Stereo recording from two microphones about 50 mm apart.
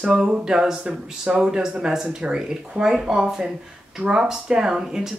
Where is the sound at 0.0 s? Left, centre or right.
Centre.